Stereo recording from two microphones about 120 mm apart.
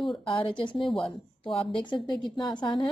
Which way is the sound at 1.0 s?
45° left (ahead or behind).